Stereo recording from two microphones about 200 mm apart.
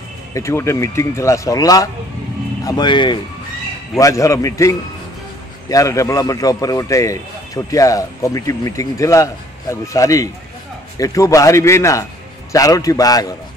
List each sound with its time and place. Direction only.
0.3 s a man's voice: 15° left (ahead or behind)